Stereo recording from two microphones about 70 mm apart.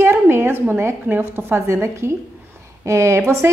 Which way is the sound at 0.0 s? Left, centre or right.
Right.